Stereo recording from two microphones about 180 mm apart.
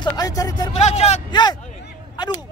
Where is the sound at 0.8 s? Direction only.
40° left (ahead or behind).